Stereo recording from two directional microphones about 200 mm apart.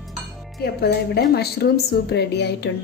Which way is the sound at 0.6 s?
55° left (ahead or behind).